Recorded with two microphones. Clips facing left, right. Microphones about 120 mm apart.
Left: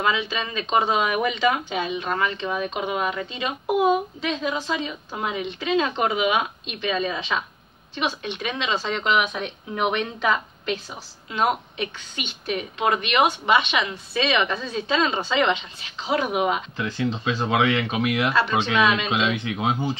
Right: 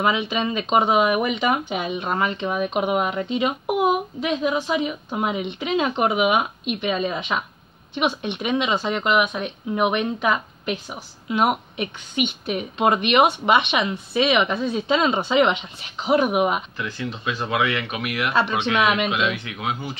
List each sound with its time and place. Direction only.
0.0 s speech: 20° right (ahead or behind)
12.7 s speech: 25° right (ahead or behind)
16.7 s speech: 25° left (ahead or behind)
18.8 s speech: 15° right (ahead or behind)
19.0 s speech: 25° left (ahead or behind)